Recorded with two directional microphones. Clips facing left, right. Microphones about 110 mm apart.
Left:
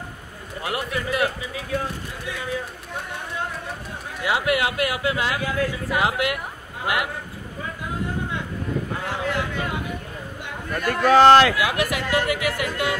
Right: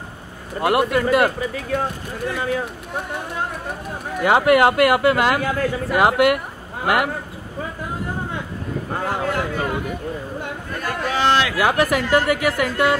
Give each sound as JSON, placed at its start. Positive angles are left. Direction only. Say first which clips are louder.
{"t": 0.6, "sound": "speech", "louder": "right 10 dB", "side_deg": -60}
{"t": 4.2, "sound": "speech", "louder": "right 8 dB", "side_deg": -50}
{"t": 9.0, "sound": "a sound", "louder": "right 4 dB", "side_deg": -40}
{"t": 10.9, "sound": "a man's voice", "louder": "left 7 dB", "side_deg": 50}
{"t": 11.5, "sound": "speech", "louder": "right 5 dB", "side_deg": -40}